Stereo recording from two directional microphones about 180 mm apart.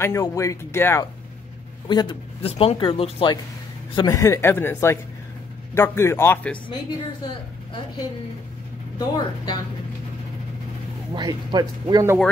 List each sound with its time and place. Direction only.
0.0 s a man's voice: 15° left (ahead or behind)
1.9 s a man's voice: 25° left (ahead or behind); by 6.6 s 10° left (ahead or behind)
8.9 s speech: 20° left (ahead or behind)
11.1 s speech: 25° right (ahead or behind)